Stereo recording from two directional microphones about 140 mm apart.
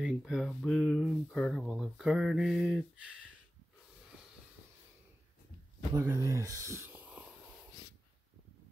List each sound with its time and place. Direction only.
0.0 s speech: centre (ahead or behind)
5.9 s speech: 25° right (ahead or behind)